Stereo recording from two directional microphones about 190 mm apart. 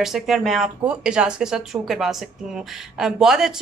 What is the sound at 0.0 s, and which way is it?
A woman's voice, centre (ahead or behind).